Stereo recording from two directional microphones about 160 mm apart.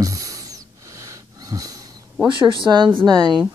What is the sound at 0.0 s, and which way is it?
Wheeze, 20° right (ahead or behind).